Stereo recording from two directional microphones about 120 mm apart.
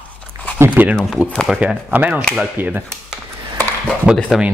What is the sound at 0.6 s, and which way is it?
A man's voice, 15° right (ahead or behind).